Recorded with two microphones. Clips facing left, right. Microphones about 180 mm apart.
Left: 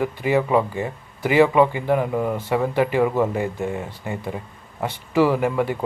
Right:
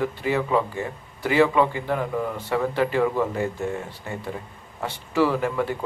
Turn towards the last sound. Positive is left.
turn(degrees=15)  # may be behind; listen again after turning